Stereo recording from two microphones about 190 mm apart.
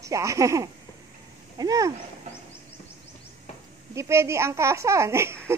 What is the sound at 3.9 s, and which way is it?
Speech, 15° right (ahead or behind).